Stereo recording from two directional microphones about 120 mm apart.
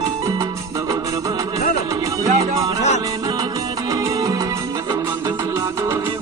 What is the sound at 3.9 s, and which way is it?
Music, 25° right (ahead or behind).